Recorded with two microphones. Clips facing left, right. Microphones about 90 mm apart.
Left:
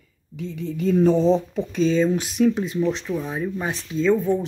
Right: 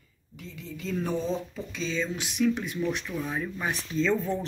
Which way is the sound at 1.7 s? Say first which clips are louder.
Left 12 dB; 50° left (ahead or behind).